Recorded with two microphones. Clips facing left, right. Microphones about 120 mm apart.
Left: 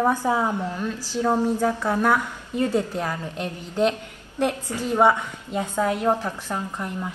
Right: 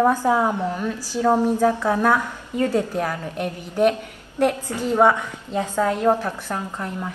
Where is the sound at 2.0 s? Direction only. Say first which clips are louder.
Right 2 dB; 15° left (ahead or behind).